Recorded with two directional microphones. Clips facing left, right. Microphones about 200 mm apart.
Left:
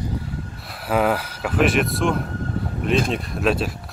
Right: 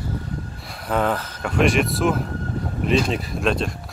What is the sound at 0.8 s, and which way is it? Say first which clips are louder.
Speech: left 2 dB; 10° left (ahead or behind).